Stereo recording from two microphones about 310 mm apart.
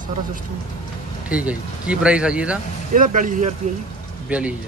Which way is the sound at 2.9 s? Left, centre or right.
Right.